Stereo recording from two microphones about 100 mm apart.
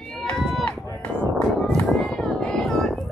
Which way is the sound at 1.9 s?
Centre (ahead or behind).